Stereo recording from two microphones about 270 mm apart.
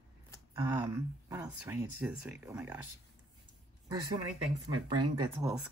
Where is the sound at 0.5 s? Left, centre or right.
Centre.